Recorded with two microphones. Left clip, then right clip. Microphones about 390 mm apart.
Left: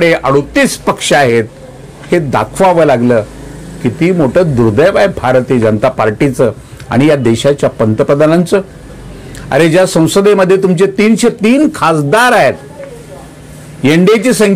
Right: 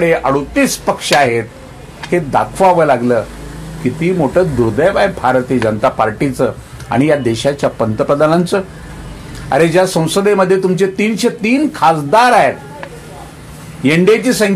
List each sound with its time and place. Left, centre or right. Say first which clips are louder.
0.0 s a man's voice: left 4 dB; left
4.3 s a man's voice: left 3 dB; left
13.8 s speech: left 3 dB; left